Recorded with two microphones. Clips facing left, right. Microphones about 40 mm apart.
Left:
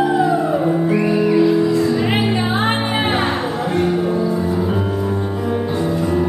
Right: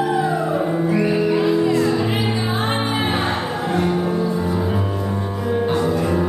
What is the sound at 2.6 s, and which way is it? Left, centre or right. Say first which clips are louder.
Music: left 3 dB; left.